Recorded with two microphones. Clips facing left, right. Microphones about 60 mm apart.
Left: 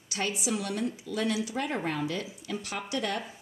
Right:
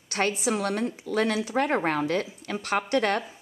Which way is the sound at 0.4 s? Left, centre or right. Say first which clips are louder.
Right 5 dB; right.